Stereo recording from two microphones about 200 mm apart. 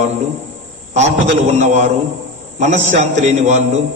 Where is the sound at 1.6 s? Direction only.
35° right (ahead or behind).